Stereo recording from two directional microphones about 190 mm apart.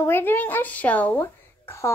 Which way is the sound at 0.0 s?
10° left (ahead or behind).